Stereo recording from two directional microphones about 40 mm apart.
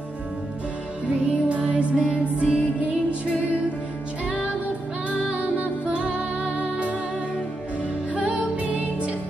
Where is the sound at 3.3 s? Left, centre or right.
Right.